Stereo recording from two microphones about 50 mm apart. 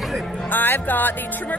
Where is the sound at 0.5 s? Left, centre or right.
Left.